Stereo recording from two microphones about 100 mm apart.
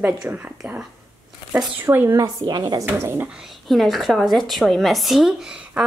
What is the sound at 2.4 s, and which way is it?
Speech, 45° right (ahead or behind).